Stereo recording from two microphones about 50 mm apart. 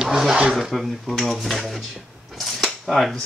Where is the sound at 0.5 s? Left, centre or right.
Centre.